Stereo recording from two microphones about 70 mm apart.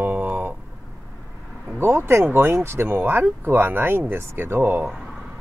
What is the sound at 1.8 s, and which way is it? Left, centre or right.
Speech, right.